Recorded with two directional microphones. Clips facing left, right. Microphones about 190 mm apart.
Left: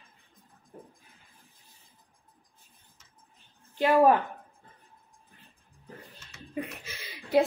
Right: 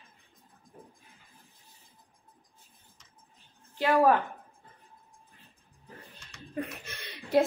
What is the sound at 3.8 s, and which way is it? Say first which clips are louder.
Speech: left 2 dB; 20° left (ahead or behind).